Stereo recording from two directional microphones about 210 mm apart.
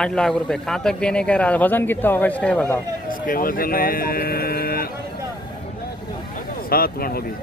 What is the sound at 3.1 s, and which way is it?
Speech, 40° left (ahead or behind).